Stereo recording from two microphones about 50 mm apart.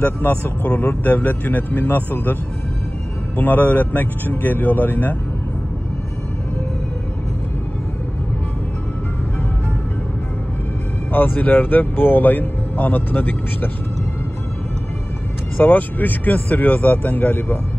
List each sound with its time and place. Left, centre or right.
0.0 s speech: left
3.3 s speech: left
11.1 s speech: left
15.5 s speech: left